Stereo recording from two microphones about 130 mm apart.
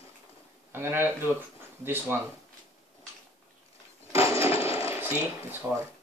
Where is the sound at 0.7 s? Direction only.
20° right (ahead or behind).